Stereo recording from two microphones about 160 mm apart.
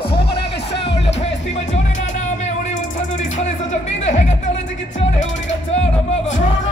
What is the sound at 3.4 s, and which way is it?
Speech, 45° left (ahead or behind).